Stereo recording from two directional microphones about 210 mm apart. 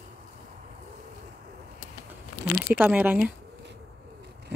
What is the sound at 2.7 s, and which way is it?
Speech, 10° right (ahead or behind).